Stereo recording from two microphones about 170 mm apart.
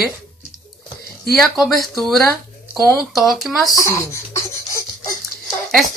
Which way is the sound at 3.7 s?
15° left (ahead or behind).